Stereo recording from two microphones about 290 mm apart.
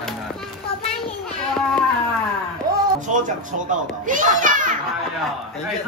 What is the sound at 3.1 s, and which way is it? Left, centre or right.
A child's voice, right.